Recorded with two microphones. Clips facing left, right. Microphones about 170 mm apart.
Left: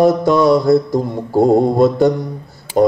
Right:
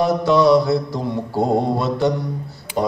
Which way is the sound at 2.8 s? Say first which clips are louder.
Left 8 dB; 50° left (ahead or behind).